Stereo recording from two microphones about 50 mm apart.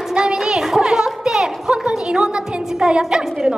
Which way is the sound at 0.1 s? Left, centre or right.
Centre.